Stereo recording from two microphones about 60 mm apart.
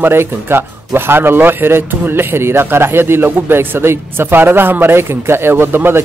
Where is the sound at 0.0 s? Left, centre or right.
Right.